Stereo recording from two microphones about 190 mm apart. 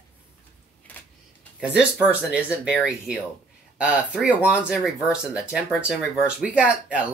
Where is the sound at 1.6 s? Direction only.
5° right (ahead or behind).